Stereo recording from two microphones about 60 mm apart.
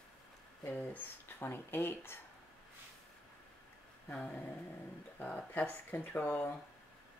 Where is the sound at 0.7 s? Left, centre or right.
Left.